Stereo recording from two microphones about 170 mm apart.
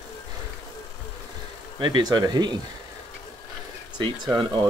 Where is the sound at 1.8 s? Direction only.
25° right (ahead or behind).